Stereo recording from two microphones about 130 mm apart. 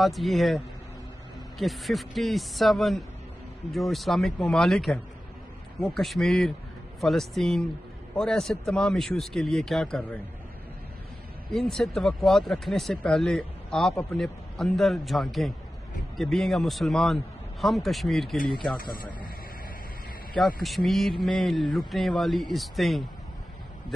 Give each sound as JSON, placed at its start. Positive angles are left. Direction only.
{"t": 0.0, "sound": "speech", "side_deg": 0}
{"t": 1.6, "sound": "speech", "side_deg": 0}
{"t": 11.5, "sound": "speech", "side_deg": 0}
{"t": 18.8, "sound": "speech", "side_deg": 90}
{"t": 20.3, "sound": "speech", "side_deg": 0}